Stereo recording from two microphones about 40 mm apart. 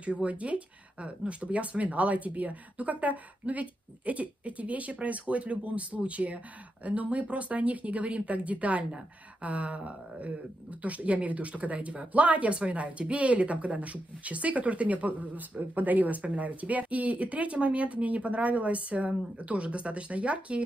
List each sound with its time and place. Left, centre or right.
0.0 s speech: right